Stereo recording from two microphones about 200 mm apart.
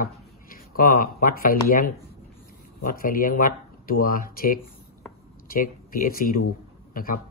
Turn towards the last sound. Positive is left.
turn(degrees=45)  # may be behind; listen again after turning